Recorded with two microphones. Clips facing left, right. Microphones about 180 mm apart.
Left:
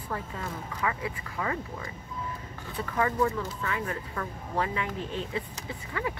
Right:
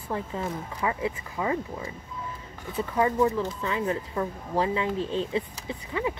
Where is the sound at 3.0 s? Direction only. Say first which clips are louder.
Right 4 dB; 20° right (ahead or behind).